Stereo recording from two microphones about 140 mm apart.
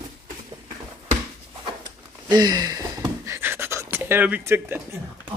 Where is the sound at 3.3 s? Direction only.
15° right (ahead or behind).